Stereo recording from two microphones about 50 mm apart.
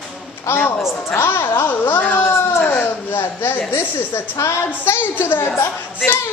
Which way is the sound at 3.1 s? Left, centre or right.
Left.